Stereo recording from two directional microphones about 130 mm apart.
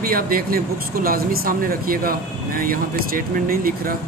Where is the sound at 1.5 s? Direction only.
90° right.